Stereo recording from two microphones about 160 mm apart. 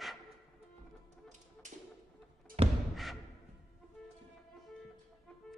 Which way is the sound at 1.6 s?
50° right (ahead or behind).